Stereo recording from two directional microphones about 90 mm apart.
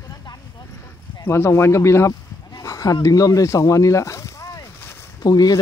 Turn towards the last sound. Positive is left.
turn(degrees=45)  # may be behind; listen again after turning